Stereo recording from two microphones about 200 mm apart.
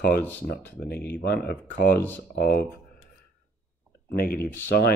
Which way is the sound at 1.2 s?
50° left (ahead or behind).